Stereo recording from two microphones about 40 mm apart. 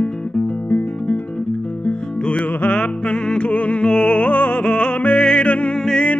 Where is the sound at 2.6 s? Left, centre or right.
Left.